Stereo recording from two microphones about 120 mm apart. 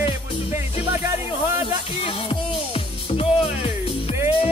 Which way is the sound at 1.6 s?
50° left (ahead or behind).